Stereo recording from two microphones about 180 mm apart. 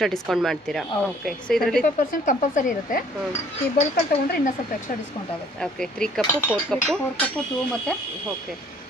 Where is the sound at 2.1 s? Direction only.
45° left (ahead or behind).